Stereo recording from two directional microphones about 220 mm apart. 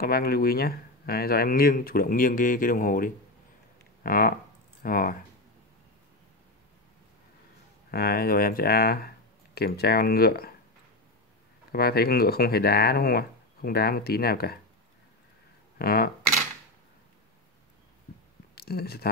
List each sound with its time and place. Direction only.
0.0 s speech: 45° left (ahead or behind)
7.9 s speech: 45° left (ahead or behind)
11.7 s speech: 45° left (ahead or behind)
15.8 s speech: 45° left (ahead or behind)
18.5 s speech: 45° left (ahead or behind)